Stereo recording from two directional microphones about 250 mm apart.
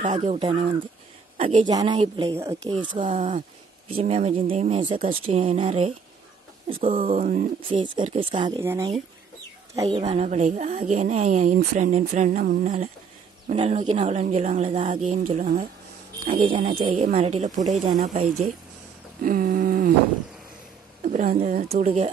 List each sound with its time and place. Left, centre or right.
0.0 s speech: right
3.1 s speech: right
7.6 s speech: centre
9.8 s speech: right
21.0 s speech: right